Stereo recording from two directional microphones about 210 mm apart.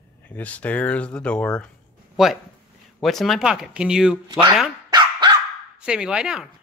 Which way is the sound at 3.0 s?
Centre (ahead or behind).